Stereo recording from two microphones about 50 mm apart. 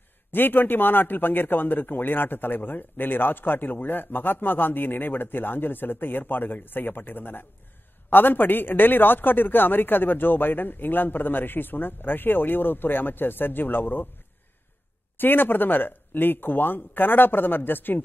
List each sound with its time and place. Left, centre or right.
0.3 s speech: left
15.1 s speech: left